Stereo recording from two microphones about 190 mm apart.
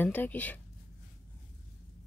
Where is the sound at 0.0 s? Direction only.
10° left (ahead or behind).